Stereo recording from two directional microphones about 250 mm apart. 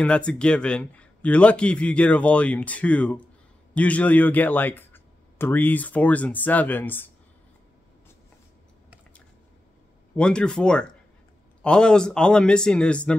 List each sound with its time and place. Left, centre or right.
0.0 s a man's voice: centre
10.1 s a man's voice: centre